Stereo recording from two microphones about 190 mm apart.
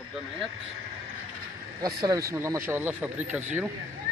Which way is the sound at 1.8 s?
20° right (ahead or behind).